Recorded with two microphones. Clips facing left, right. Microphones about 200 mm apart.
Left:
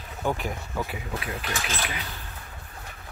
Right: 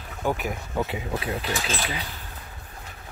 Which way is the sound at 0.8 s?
25° right (ahead or behind).